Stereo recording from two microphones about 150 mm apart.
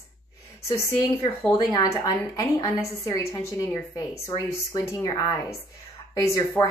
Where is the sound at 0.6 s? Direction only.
20° left (ahead or behind).